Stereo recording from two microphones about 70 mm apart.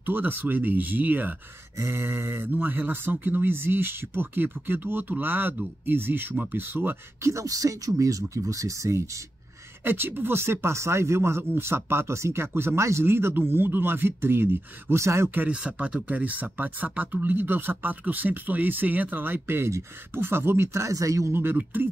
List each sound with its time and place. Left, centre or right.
0.0 s speech: right
1.8 s speech: right
7.2 s speech: right
9.8 s speech: right
15.3 s speech: centre; by 21.4 s right